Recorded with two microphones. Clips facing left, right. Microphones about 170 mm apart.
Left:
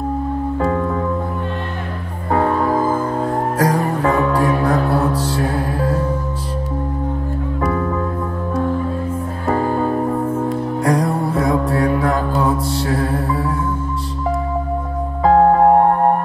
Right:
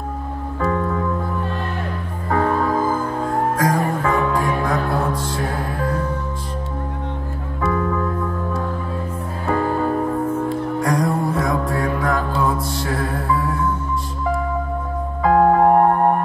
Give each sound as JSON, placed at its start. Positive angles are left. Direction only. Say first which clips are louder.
{"t": 0.6, "sound": "music", "louder": "even", "side_deg": 35}
{"t": 3.5, "sound": "music", "louder": "left 2 dB", "side_deg": 35}
{"t": 10.9, "sound": "music", "louder": "left 3 dB", "side_deg": 35}
{"t": 15.2, "sound": "music", "louder": "left 2 dB", "side_deg": 35}